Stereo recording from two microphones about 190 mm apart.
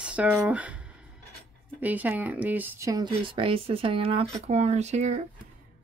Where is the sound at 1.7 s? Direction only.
10° right (ahead or behind); by 5.2 s 35° right (ahead or behind).